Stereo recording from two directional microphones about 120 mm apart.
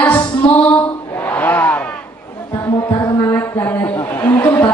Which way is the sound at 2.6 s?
25° left (ahead or behind).